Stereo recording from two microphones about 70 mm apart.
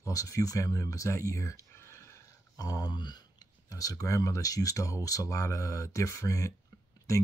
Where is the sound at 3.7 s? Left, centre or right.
Left.